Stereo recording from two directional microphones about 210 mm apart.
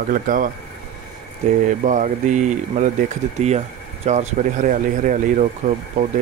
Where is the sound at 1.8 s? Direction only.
35° right (ahead or behind).